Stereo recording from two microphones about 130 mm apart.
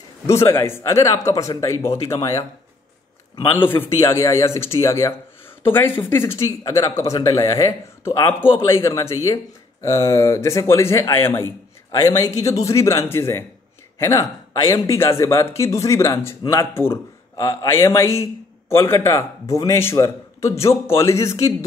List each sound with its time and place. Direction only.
0.3 s speech: 20° left (ahead or behind)
3.5 s a man's voice: 15° left (ahead or behind)